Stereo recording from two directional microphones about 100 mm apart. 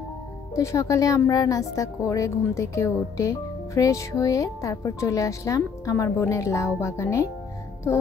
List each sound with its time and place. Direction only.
0.6 s a woman's voice: 30° left (ahead or behind)